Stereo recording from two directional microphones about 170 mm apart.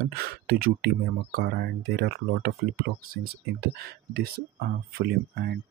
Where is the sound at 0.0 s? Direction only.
65° right (ahead or behind).